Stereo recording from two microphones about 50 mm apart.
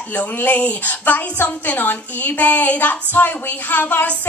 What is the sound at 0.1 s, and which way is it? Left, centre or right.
A woman's voice, left.